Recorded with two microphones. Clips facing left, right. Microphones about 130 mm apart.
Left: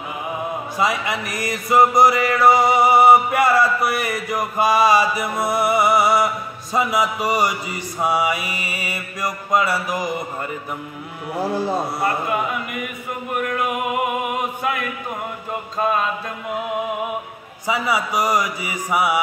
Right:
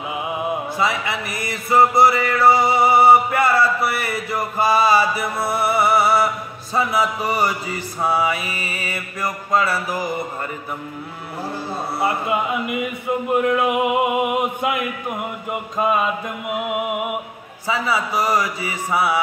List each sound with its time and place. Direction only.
1.0 s music: 20° left (ahead or behind)
12.0 s a sound: 20° right (ahead or behind)
17.6 s mantra: 20° left (ahead or behind)